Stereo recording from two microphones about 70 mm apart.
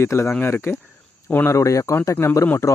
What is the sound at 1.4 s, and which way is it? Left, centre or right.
Speech, left.